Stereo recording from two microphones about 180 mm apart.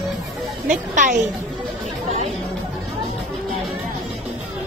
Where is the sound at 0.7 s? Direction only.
45° right (ahead or behind).